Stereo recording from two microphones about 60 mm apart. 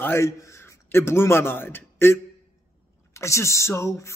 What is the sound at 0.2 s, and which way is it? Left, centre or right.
A man's voice, left.